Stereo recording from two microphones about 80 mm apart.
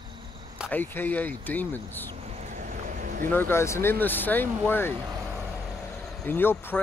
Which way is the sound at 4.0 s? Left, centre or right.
Left.